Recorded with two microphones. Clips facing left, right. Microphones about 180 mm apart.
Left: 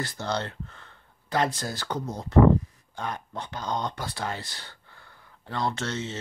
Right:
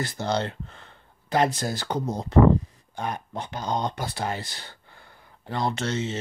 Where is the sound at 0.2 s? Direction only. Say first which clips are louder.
Right 5 dB; 20° right (ahead or behind).